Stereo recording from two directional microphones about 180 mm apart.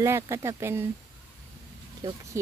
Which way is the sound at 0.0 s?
15° right (ahead or behind).